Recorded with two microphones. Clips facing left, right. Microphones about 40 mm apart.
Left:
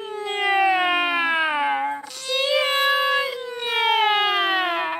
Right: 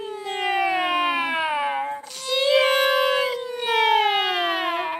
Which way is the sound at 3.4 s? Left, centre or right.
Centre.